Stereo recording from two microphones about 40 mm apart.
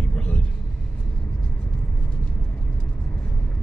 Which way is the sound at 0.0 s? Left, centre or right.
Left.